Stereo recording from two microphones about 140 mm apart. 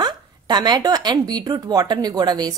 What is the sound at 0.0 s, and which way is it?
A woman's voice, 30° right (ahead or behind).